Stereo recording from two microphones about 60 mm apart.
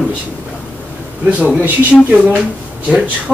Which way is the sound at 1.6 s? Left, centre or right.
Right.